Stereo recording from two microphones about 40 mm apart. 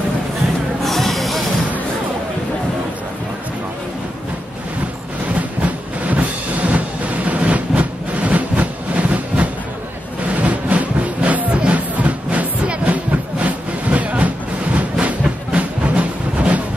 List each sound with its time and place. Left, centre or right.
0.8 s music: centre
6.0 s music: right
10.3 s a sound: right